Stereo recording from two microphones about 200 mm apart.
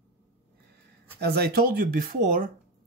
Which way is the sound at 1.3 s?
50° right (ahead or behind).